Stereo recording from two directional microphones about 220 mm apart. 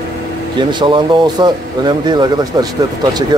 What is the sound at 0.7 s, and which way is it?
Speech, 20° right (ahead or behind).